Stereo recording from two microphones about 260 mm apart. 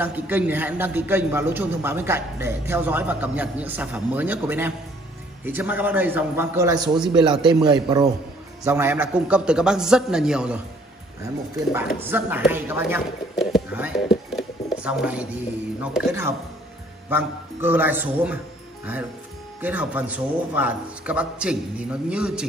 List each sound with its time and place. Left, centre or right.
0.0 s a man's voice: centre
11.7 s a man's voice: centre
19.6 s a man's voice: centre